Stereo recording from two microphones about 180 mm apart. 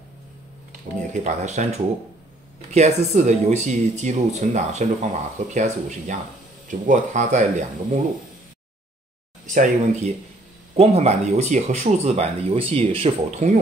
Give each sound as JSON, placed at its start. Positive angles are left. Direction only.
{"t": 1.1, "sound": "speech", "side_deg": -40}
{"t": 9.5, "sound": "speech", "side_deg": -45}